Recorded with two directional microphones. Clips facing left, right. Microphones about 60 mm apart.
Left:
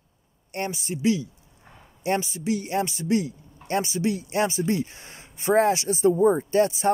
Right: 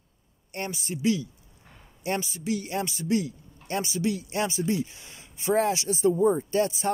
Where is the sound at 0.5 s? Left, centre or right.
Left.